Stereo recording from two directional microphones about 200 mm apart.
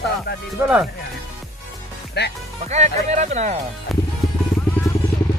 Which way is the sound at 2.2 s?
55° left (ahead or behind).